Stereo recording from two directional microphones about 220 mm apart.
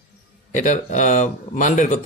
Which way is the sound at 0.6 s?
35° left (ahead or behind).